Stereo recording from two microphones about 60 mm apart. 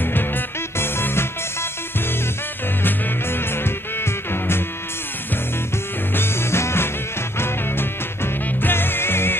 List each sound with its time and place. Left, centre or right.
0.0 s music: left
6.1 s music: left